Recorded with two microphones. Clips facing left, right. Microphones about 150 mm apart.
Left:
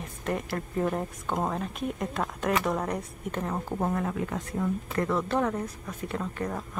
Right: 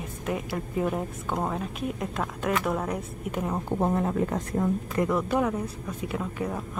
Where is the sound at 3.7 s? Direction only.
25° right (ahead or behind).